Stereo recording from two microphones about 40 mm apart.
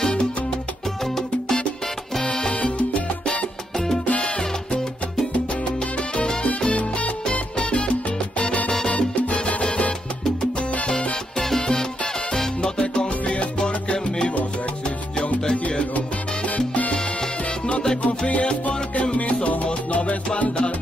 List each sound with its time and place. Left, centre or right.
0.0 s music: centre
1.0 s music: centre
2.2 s salsa music: left
3.7 s salsa music: centre
4.0 s salsa music: left
6.1 s salsa music: centre
6.7 s salsa music: left
8.6 s salsa music: centre
9.1 s salsa music: left
11.3 s salsa music: centre; by 13.5 s left
13.6 s music: left
16.4 s salsa music: left
16.9 s salsa music: left
18.0 s music: left